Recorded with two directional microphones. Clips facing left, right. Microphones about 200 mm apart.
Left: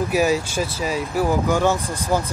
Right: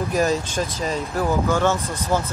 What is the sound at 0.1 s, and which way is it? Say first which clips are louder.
Speech: even; 10° left (ahead or behind).